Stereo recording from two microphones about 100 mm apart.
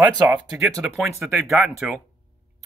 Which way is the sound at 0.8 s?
Centre (ahead or behind).